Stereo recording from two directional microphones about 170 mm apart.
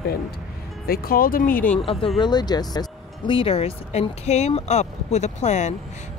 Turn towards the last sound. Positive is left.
turn(degrees=45)  # may be behind; listen again after turning